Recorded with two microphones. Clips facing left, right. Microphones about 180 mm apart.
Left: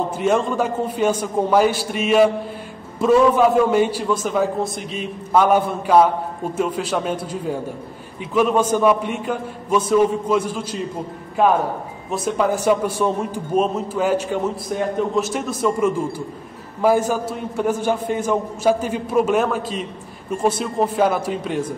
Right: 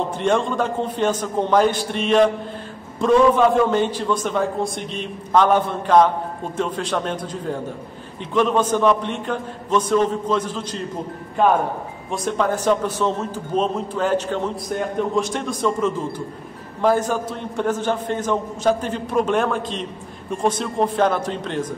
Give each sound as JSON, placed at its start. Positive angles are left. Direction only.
{"t": 0.2, "sound": "a man's voice", "side_deg": 5}
{"t": 12.1, "sound": "a man's voice", "side_deg": 5}